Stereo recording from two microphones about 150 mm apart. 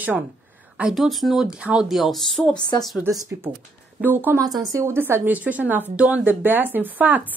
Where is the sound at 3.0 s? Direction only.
20° right (ahead or behind).